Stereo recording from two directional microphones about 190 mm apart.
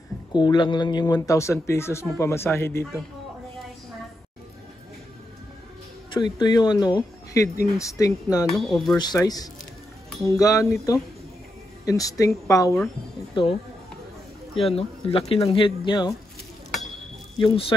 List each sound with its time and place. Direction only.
0.3 s speech: 25° left (ahead or behind)
6.4 s speech: 20° left (ahead or behind)
8.5 s speech: centre (ahead or behind)
8.9 s speech: 20° left (ahead or behind)
17.4 s speech: 30° left (ahead or behind)